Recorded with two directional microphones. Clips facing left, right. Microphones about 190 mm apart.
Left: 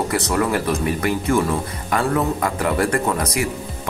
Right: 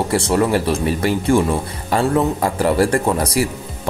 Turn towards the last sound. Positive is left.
turn(degrees=-30)  # may be behind; listen again after turning